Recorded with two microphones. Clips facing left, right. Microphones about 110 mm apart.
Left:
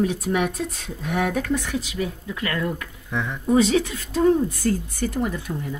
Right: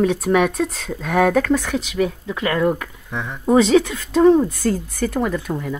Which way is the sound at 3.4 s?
90° right.